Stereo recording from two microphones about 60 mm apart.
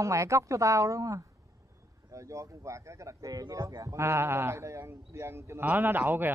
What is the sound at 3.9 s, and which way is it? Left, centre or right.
Speech, right.